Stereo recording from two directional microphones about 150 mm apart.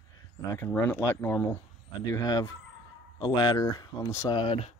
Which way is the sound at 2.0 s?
25° left (ahead or behind).